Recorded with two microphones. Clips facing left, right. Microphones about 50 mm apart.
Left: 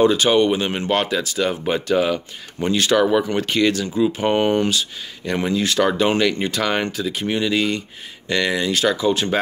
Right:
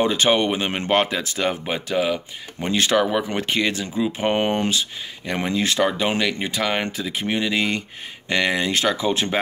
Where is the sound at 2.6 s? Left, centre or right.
Right.